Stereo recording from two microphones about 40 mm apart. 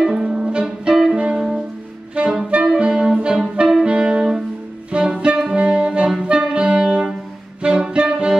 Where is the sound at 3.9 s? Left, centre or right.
Right.